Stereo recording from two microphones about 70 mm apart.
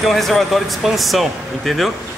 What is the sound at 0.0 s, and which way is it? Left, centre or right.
A man's voice, centre.